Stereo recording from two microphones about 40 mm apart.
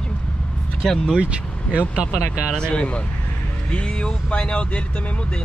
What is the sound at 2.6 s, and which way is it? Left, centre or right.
Speech, left.